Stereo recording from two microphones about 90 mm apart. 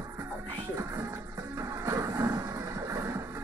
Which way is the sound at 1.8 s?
35° right (ahead or behind).